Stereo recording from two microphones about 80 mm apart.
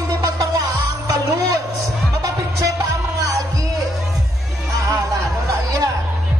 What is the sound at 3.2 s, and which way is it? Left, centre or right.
Music, right.